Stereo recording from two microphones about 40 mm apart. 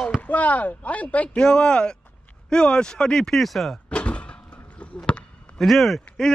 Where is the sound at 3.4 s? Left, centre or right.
Centre.